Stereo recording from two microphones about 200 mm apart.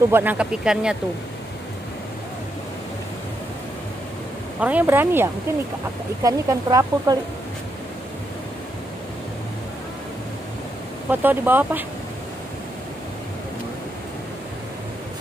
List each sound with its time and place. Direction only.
0.1 s speech: 10° right (ahead or behind)
4.6 s speech: 5° right (ahead or behind)
11.1 s speech: 10° right (ahead or behind)